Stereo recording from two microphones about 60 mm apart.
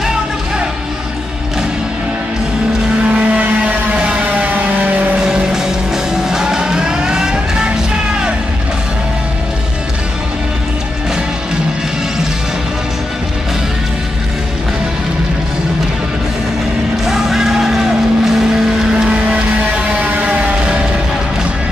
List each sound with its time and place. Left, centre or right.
3.2 s vehicle: right
5.2 s music: centre
17.0 s vehicle: centre
20.1 s music: right